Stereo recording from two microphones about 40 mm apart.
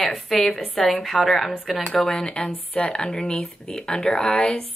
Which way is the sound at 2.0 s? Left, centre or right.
Centre.